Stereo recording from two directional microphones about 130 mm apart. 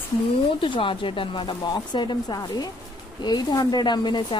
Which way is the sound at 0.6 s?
40° left (ahead or behind).